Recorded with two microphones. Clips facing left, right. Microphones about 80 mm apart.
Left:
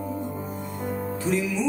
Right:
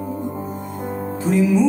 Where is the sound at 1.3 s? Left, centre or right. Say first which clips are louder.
Right 10 dB; centre.